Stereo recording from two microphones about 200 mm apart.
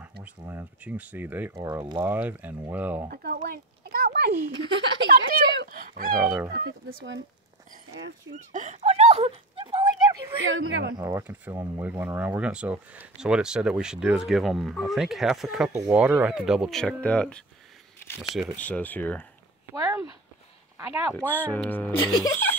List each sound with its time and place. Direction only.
0.2 s speech: 10° right (ahead or behind)
3.1 s a sound: 50° right (ahead or behind)
4.9 s speech: 50° right (ahead or behind)
6.2 s speech: 5° right (ahead or behind)
6.5 s speech: 60° right (ahead or behind)
8.5 s a sound: 35° right (ahead or behind)
10.4 s a woman's voice: 75° right (ahead or behind)
11.0 s speech: 15° right (ahead or behind); by 19.2 s 10° left (ahead or behind)
20.7 s speech: 15° right (ahead or behind)
21.2 s speech: 10° left (ahead or behind)